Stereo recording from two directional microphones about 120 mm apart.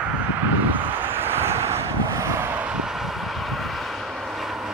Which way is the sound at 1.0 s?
20° right (ahead or behind).